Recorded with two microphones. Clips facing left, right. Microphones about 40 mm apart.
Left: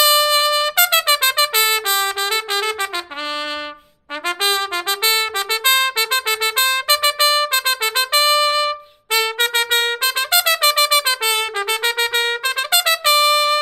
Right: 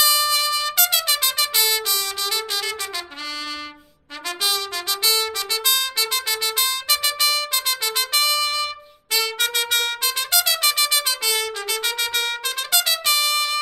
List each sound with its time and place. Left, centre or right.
0.0 s trumpet: left
4.4 s trumpet: left